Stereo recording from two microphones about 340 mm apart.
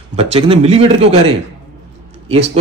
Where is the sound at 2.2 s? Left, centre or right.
Centre.